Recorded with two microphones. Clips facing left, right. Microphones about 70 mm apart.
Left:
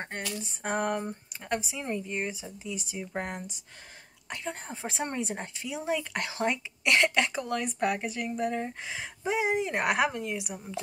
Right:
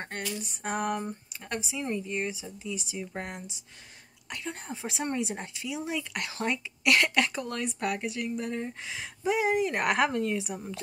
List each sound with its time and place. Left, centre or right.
0.0 s a sound: left
0.5 s a woman's voice: left
3.0 s a woman's voice: left; by 10.6 s centre